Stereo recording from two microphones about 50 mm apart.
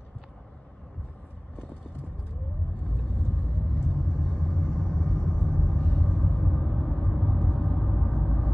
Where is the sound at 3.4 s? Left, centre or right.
Centre.